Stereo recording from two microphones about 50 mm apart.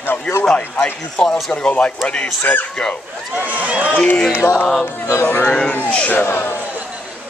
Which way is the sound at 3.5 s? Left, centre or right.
Right.